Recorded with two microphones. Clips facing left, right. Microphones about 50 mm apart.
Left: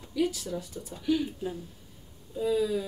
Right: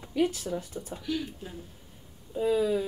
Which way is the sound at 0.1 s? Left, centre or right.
Right.